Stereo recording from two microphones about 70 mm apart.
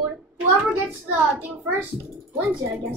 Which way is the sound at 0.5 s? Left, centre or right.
Right.